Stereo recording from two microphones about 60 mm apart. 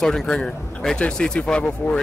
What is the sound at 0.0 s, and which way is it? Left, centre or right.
Speech, centre.